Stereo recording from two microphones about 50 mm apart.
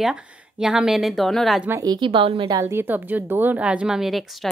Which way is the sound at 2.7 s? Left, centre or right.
Right.